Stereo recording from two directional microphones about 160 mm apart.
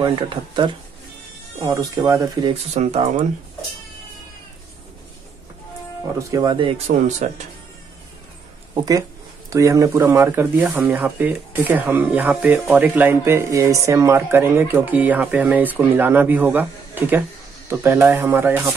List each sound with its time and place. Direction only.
0.0 s speech: 30° right (ahead or behind)
2.5 s speech: 45° right (ahead or behind)
6.1 s speech: 25° right (ahead or behind)
6.9 s speech: 45° right (ahead or behind)
8.7 s speech: 20° right (ahead or behind)